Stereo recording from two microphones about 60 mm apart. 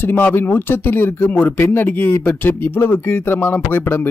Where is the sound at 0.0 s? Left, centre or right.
Left.